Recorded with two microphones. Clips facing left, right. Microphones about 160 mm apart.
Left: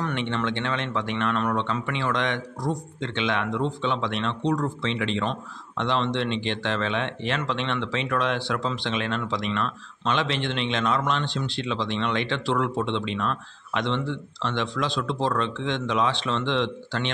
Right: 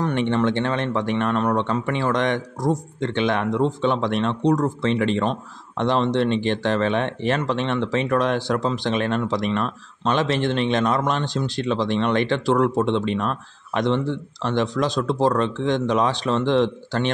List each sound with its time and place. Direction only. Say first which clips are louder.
0.0 s speech: right 7 dB; 45° right (ahead or behind)